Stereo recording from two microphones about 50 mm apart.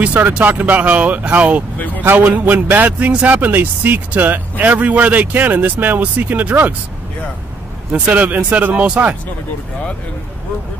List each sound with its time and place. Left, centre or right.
0.0 s speech: right
8.0 s speech: right